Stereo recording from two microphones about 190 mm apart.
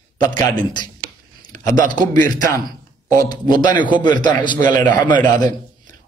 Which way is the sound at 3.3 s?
20° left (ahead or behind).